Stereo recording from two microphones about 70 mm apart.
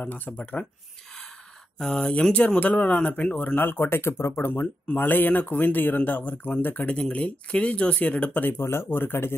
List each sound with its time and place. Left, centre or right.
0.0 s speech: left
1.8 s speech: centre; by 6.9 s left
6.9 s speech: centre
8.5 s speech: left